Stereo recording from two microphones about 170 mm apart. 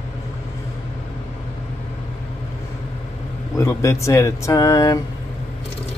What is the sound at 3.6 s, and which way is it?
Speech, 20° left (ahead or behind).